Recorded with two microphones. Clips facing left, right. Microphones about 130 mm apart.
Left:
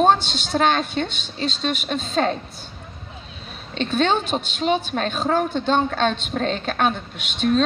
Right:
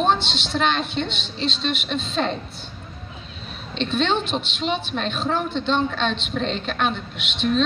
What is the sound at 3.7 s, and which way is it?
A woman's voice, 45° left (ahead or behind).